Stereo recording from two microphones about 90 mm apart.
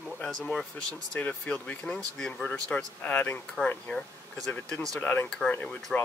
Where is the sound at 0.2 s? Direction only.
5° left (ahead or behind).